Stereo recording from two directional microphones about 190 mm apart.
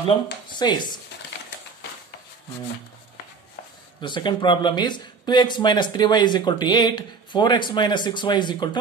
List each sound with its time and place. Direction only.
0.5 s speech: 25° left (ahead or behind)
4.0 s speech: 25° left (ahead or behind)